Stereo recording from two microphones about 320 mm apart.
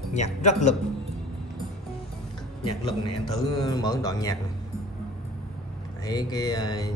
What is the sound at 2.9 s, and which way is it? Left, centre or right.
Speech, centre.